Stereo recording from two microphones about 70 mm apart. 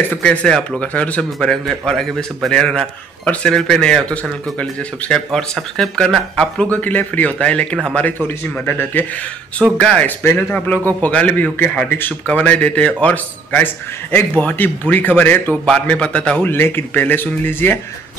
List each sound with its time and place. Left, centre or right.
0.2 s speech: centre
1.5 s speech: centre
6.4 s speech: centre
8.6 s a man's voice: left
9.8 s speech: centre
10.0 s a man's voice: left
15.5 s speech: centre
16.4 s a man's voice: left